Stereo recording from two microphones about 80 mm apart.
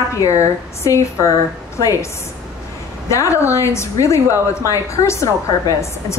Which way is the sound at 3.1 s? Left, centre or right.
Left.